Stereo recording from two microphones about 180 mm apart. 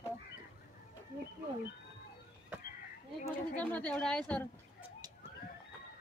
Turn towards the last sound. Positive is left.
turn(degrees=5)  # may be behind; listen again after turning